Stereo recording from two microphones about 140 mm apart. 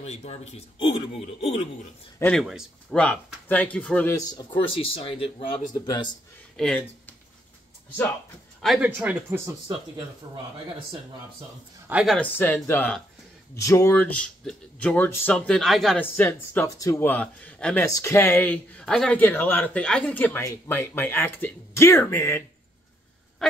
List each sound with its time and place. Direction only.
0.0 s speech: 50° left (ahead or behind)
2.3 s a man's voice: centre (ahead or behind)
4.7 s speech: 40° left (ahead or behind)
6.5 s speech: 5° left (ahead or behind)
8.6 s speech: 10° right (ahead or behind)
9.7 s speech: 40° right (ahead or behind)
11.9 s a man's voice: 5° right (ahead or behind)
12.2 s speech: 15° left (ahead or behind)
16.0 s speech: 15° left (ahead or behind)
17.8 s speech: 20° left (ahead or behind)